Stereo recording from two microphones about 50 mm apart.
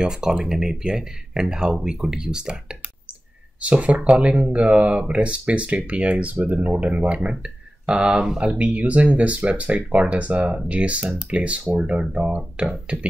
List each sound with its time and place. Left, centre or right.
0.0 s speech: centre
3.6 s speech: right